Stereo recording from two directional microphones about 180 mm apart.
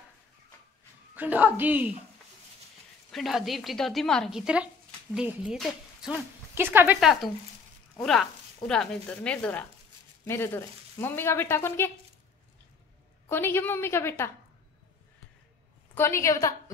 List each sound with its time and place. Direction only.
1.1 s a child's voice: 10° right (ahead or behind)
3.1 s a woman's voice: centre (ahead or behind)
8.0 s speech: centre (ahead or behind)
13.3 s speech: 10° left (ahead or behind)
15.9 s speech: 15° left (ahead or behind)